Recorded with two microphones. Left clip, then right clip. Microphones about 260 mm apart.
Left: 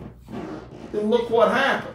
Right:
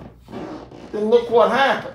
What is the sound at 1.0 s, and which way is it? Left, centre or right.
Speech, right.